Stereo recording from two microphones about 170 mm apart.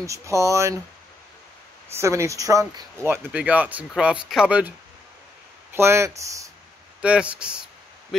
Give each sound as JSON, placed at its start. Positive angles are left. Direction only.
{"t": 0.0, "sound": "speech", "side_deg": -20}
{"t": 2.0, "sound": "speech", "side_deg": -15}
{"t": 7.0, "sound": "speech", "side_deg": -5}